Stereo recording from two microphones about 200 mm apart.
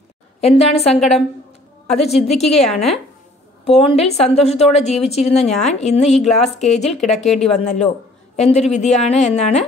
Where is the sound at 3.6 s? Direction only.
30° left (ahead or behind).